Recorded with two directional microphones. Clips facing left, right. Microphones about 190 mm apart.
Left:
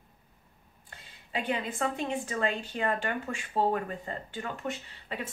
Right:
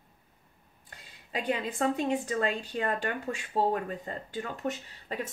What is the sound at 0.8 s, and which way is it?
A woman's voice, 35° right (ahead or behind).